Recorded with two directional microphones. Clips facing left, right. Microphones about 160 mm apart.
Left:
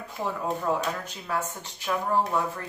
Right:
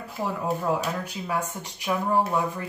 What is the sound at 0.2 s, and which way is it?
Speech, 5° right (ahead or behind).